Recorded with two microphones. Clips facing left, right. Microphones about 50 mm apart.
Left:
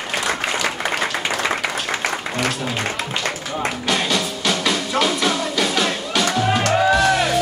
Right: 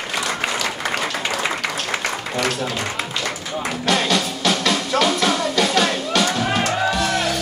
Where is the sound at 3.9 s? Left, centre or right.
Centre.